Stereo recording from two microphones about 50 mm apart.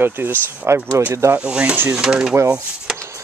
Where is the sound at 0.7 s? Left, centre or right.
Right.